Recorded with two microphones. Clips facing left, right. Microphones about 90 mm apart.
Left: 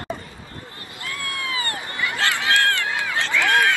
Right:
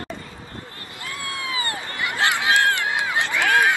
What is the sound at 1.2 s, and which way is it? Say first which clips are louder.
Run: even; 20° right (ahead or behind).